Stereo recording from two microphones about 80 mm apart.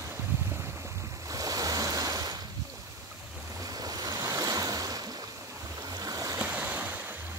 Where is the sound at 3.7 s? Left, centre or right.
Right.